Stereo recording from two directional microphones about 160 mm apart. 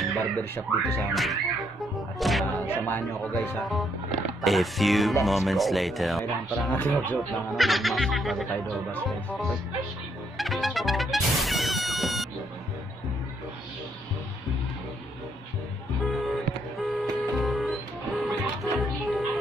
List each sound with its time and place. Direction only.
0.4 s speech: 15° left (ahead or behind)
1.1 s speech: centre (ahead or behind)
2.6 s speech: 15° left (ahead or behind)
4.4 s speech: centre (ahead or behind)
6.7 s speech: 10° left (ahead or behind)
7.2 s speech: centre (ahead or behind)
10.3 s trumpet: centre (ahead or behind)
16.0 s music: centre (ahead or behind)